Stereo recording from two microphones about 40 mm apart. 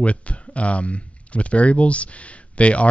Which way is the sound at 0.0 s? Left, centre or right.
Left.